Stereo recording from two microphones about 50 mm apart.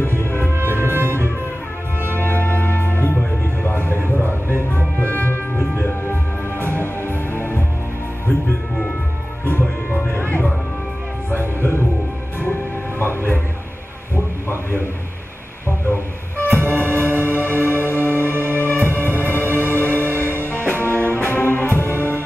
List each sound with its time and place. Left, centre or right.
0.2 s music: left
0.7 s music: right
2.1 s music: left
11.2 s music: left
13.0 s music: left
14.1 s heart sounds: left
15.9 s music: left